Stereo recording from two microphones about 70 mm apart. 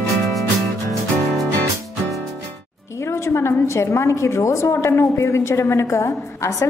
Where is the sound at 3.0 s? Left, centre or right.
Left.